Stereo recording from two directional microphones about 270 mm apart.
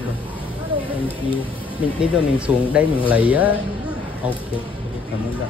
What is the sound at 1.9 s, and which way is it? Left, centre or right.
A man's voice, centre.